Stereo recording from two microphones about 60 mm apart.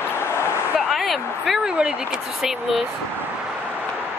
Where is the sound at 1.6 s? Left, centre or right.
Centre.